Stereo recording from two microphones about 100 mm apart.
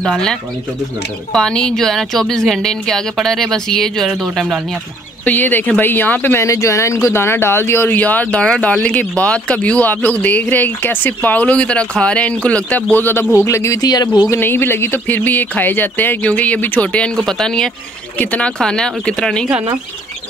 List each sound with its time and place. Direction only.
0.0 s a woman's voice: 5° left (ahead or behind)
5.2 s speech: 20° left (ahead or behind); by 14.1 s 40° left (ahead or behind)
14.3 s a woman's voice: 20° left (ahead or behind); by 19.4 s 5° left (ahead or behind)